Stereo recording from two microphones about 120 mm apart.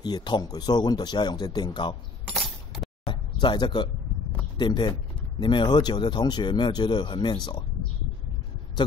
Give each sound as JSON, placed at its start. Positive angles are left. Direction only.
{"t": 0.0, "sound": "speech", "side_deg": 35}
{"t": 3.1, "sound": "a sound", "side_deg": 40}
{"t": 4.6, "sound": "speech", "side_deg": 40}